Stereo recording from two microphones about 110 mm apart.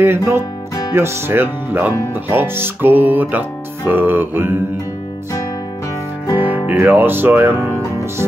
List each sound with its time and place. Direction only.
0.0 s music: 25° right (ahead or behind)
6.3 s music: 15° right (ahead or behind)